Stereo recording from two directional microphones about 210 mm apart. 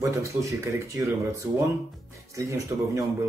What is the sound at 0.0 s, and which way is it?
Speech, 15° right (ahead or behind).